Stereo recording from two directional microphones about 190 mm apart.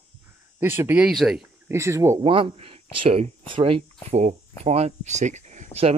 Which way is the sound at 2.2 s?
30° right (ahead or behind).